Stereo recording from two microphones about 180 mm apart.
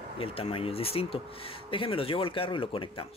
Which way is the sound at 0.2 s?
30° left (ahead or behind).